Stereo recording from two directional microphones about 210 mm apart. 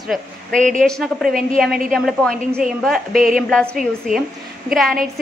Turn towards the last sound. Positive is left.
turn(degrees=0)  # may be behind; listen again after turning